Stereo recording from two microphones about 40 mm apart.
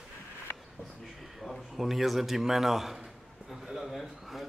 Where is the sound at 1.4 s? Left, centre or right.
Centre.